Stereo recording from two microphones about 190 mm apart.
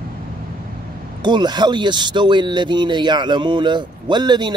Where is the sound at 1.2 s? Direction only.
25° right (ahead or behind).